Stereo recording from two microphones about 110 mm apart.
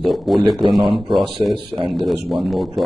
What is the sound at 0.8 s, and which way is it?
Speech, 50° right (ahead or behind).